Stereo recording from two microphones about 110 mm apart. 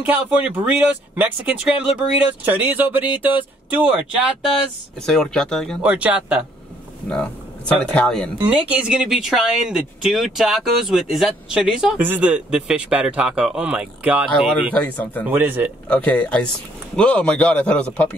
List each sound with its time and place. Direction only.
0.0 s speech: 15° right (ahead or behind)
5.0 s speech: 5° left (ahead or behind)
5.8 s speech: 10° right (ahead or behind)
7.1 s a sound: 10° left (ahead or behind)
7.8 s speech: 10° left (ahead or behind)
8.5 s speech: 10° right (ahead or behind)
15.9 s speech: 10° left (ahead or behind)